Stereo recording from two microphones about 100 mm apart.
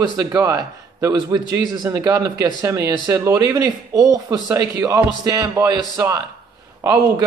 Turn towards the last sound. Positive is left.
turn(degrees=-35)  # may be behind; listen again after turning